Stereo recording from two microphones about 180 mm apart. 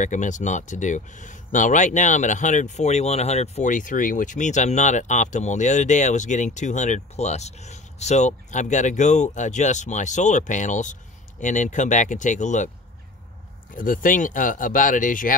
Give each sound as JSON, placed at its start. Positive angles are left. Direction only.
{"t": 0.0, "sound": "speech", "side_deg": 45}
{"t": 13.7, "sound": "speech", "side_deg": 50}